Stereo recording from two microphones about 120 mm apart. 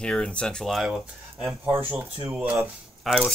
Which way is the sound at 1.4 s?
20° right (ahead or behind).